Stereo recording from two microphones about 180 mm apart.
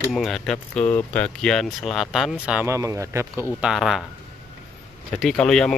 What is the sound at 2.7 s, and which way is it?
Speech, 15° right (ahead or behind).